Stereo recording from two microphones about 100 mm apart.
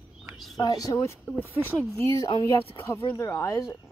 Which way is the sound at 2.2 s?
40° left (ahead or behind).